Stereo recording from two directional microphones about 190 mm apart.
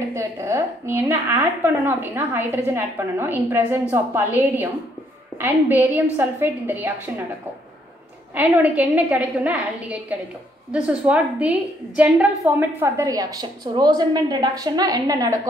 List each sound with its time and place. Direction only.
0.1 s a woman's voice: 15° right (ahead or behind)
8.4 s a woman's voice: 10° right (ahead or behind)